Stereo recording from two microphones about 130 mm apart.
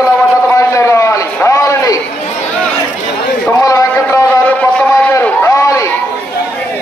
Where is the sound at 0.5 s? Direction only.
25° left (ahead or behind).